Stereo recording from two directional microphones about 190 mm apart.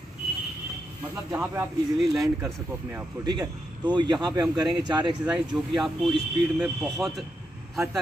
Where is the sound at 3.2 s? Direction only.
20° right (ahead or behind).